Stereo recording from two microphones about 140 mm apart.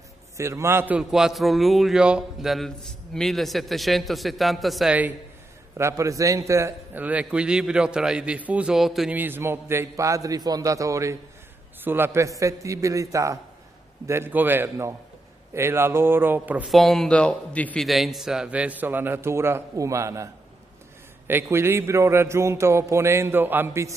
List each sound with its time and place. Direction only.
0.4 s a man's voice: 20° right (ahead or behind); by 4.9 s centre (ahead or behind)
5.8 s a man's voice: 20° right (ahead or behind); by 9.1 s centre (ahead or behind)
9.1 s a man's voice: 15° right (ahead or behind)
16.7 s a man's voice: centre (ahead or behind); by 20.2 s 20° right (ahead or behind)
21.3 s a man's voice: 15° right (ahead or behind)